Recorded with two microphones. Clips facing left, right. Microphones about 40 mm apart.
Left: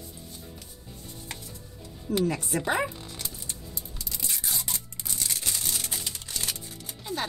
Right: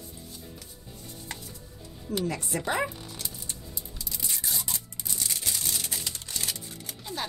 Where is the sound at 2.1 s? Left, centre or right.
Centre.